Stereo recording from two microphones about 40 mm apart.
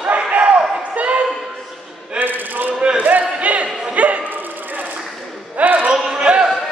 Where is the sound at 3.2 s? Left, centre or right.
Right.